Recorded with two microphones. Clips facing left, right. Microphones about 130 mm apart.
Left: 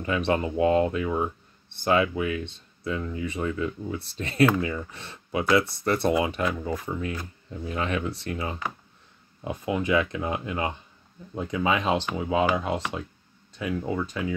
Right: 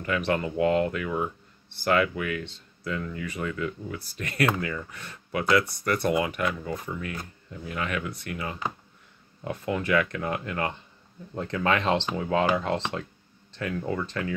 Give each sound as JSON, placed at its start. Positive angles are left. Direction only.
{"t": 0.0, "sound": "speech", "side_deg": 20}
{"t": 9.4, "sound": "speech", "side_deg": 15}